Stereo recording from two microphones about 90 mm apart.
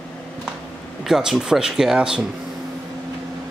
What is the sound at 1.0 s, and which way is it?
Speech, 5° right (ahead or behind).